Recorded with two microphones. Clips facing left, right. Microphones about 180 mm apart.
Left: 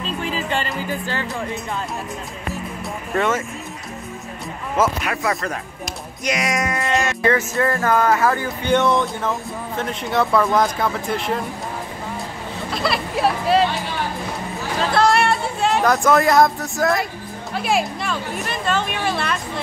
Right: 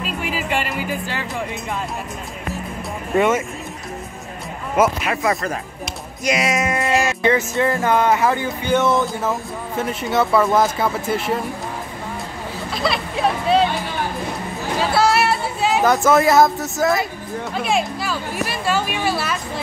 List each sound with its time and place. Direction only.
0.2 s music: 10° right (ahead or behind)
3.2 s speech: 15° right (ahead or behind)
5.0 s speech: centre (ahead or behind)
7.2 s speech: 20° right (ahead or behind)
8.6 s speech: 5° right (ahead or behind)
12.7 s hubbub: centre (ahead or behind)
14.8 s a sound: 5° right (ahead or behind)
17.6 s speech: centre (ahead or behind)